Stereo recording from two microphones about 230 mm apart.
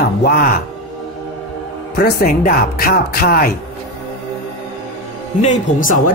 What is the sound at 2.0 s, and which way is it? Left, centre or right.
Speech, left.